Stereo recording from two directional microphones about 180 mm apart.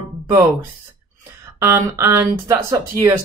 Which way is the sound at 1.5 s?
15° right (ahead or behind).